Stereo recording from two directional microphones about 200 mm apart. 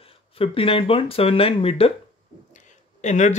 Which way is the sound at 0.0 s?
30° left (ahead or behind).